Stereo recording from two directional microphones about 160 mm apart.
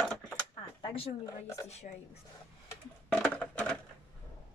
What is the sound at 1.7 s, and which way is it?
Speech, 45° left (ahead or behind).